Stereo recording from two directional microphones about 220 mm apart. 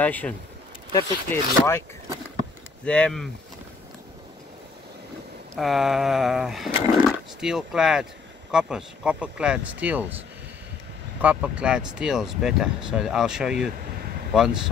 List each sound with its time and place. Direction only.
0.0 s speech: 5° left (ahead or behind)
5.6 s speech: centre (ahead or behind)
11.1 s speech: 5° right (ahead or behind)